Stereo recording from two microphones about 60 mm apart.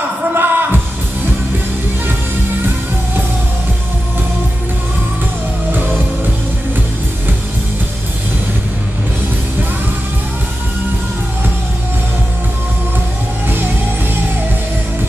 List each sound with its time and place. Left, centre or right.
0.3 s music: right